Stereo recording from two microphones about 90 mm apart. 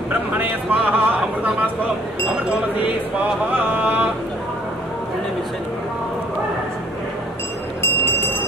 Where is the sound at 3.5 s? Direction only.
20° right (ahead or behind).